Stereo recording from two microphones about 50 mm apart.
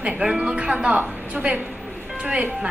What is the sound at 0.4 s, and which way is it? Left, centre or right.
A woman's voice, right.